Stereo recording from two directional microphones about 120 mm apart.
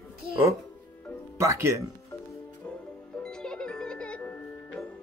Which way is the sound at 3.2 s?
5° left (ahead or behind).